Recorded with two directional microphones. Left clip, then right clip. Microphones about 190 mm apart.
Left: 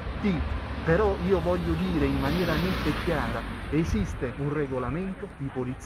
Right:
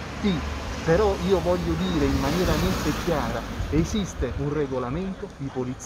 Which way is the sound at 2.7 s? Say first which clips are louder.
Right 2 dB; 50° right (ahead or behind).